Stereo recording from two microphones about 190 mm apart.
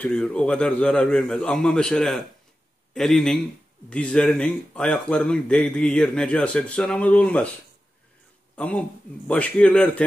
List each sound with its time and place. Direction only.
0.0 s speech: 5° left (ahead or behind)
8.5 s a man's voice: 5° left (ahead or behind)